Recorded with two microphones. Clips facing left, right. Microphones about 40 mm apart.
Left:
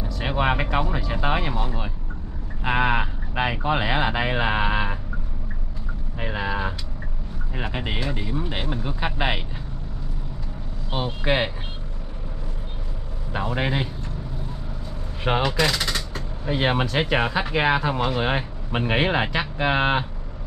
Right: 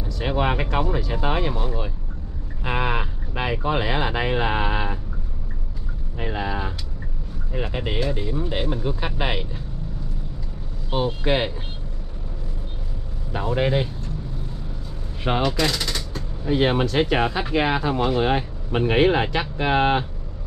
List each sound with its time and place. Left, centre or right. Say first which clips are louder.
0.0 s speech: even; centre
6.1 s speech: even; centre
10.9 s speech: right 2 dB; centre
13.3 s speech: right 3 dB; centre
15.2 s speech: even; centre